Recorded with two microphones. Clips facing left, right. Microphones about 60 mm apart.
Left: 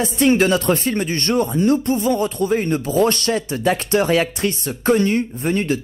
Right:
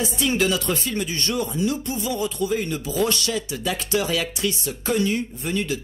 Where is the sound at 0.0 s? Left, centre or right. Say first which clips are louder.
Left 7 dB; left.